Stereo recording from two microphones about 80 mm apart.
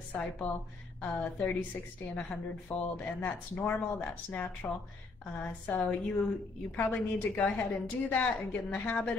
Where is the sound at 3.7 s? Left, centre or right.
Left.